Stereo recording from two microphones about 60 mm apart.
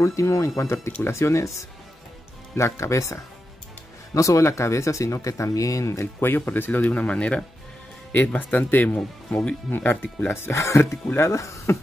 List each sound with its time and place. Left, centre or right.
0.0 s speech: left
0.6 s speech: left
6.4 s speech: left
8.4 s speech: left
9.3 s speech: centre
9.7 s speech: left